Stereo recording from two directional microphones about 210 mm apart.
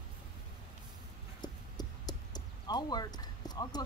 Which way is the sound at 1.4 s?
20° left (ahead or behind).